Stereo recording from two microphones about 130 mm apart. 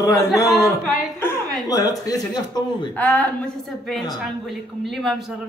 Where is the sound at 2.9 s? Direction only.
10° left (ahead or behind).